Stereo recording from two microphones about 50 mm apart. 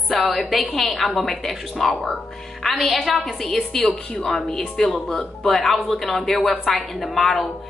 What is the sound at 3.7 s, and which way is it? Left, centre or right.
Speech, centre.